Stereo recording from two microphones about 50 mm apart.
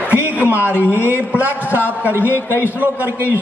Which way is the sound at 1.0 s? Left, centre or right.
Right.